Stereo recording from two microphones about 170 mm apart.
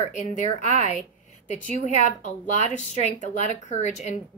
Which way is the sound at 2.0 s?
45° left (ahead or behind).